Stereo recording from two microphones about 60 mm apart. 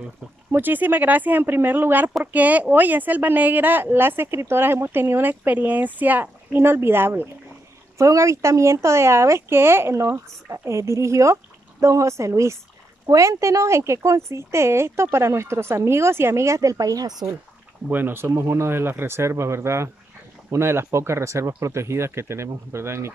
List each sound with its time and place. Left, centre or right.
0.6 s speech: right
6.6 s speech: right
8.0 s speech: right
13.0 s speech: right
17.8 s speech: right